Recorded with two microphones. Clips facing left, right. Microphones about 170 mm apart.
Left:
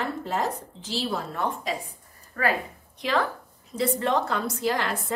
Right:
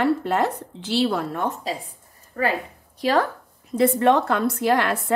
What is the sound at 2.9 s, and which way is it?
Speech, 40° right (ahead or behind).